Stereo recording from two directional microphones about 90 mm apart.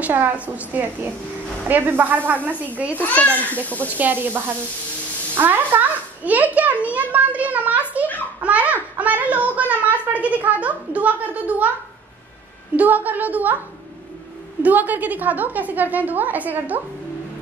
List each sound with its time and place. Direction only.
0.0 s a woman's voice: 20° right (ahead or behind)
3.0 s a child's voice: 15° left (ahead or behind)
3.9 s a woman's voice: 20° right (ahead or behind)
8.4 s a sound: 15° right (ahead or behind)
10.0 s a woman's voice: 15° right (ahead or behind)
12.7 s a woman's voice: 20° right (ahead or behind)
14.6 s a woman's voice: 20° right (ahead or behind)